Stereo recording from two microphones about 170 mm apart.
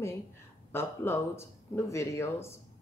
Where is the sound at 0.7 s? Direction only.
15° left (ahead or behind).